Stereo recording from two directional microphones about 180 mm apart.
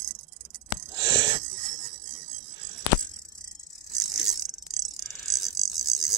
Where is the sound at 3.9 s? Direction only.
Centre (ahead or behind).